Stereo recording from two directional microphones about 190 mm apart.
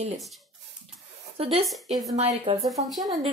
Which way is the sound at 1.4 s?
30° right (ahead or behind).